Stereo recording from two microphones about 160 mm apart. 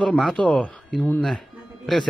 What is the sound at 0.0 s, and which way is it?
Speech, 5° left (ahead or behind).